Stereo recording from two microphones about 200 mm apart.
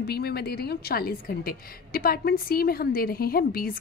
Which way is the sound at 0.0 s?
50° left (ahead or behind).